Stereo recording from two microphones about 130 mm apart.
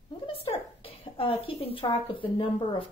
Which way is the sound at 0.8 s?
45° left (ahead or behind).